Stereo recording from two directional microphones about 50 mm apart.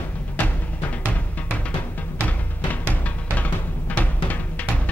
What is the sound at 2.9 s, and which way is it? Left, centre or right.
Music, left.